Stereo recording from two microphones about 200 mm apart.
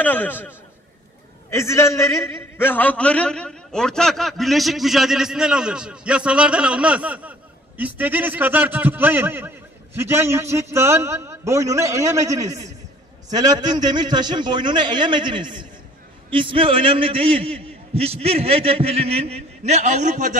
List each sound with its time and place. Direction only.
0.0 s a man's voice: 10° left (ahead or behind)
1.5 s a man's voice: 15° left (ahead or behind); by 20.3 s 40° right (ahead or behind)